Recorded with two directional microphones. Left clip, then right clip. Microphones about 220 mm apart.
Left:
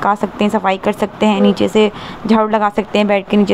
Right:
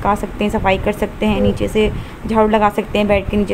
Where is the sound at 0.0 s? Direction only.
5° left (ahead or behind).